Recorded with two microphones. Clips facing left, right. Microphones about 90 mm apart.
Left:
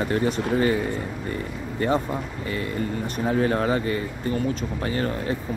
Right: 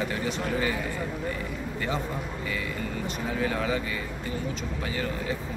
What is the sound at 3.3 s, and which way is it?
Speech, 45° left (ahead or behind).